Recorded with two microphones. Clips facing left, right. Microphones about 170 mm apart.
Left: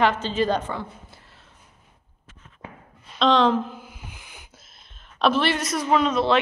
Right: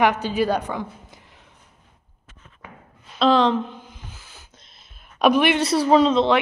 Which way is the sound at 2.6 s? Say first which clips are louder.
Left 2 dB; 30° left (ahead or behind).